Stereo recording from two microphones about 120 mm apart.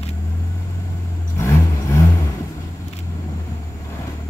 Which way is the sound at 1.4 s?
25° left (ahead or behind).